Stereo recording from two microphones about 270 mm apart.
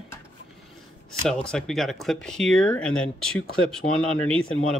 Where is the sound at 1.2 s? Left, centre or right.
Centre.